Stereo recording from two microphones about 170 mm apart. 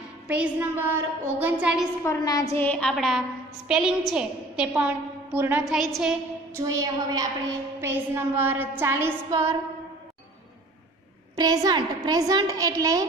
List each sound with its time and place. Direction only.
0.3 s child singing: 10° right (ahead or behind)
2.0 s a woman's voice: 20° left (ahead or behind)
2.5 s a woman's voice: 10° left (ahead or behind); by 5.8 s 10° right (ahead or behind)
5.8 s a woman's voice: centre (ahead or behind)
6.5 s a woman's voice: 20° right (ahead or behind)
7.8 s child singing: 15° right (ahead or behind)
11.3 s a woman's voice: 20° right (ahead or behind)